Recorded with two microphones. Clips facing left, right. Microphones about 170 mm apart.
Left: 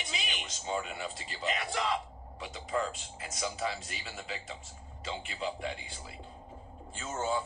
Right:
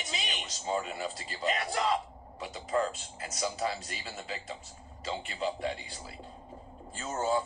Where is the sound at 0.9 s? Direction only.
Centre (ahead or behind).